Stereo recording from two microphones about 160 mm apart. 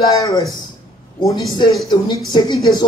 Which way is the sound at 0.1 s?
20° left (ahead or behind).